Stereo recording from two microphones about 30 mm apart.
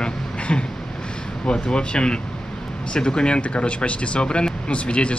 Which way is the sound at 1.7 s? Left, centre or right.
Left.